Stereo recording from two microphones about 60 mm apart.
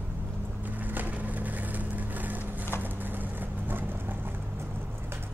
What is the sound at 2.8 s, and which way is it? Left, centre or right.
Clip-clop, right.